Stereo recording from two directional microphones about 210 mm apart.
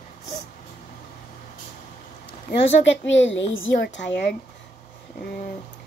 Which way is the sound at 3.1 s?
60° left (ahead or behind).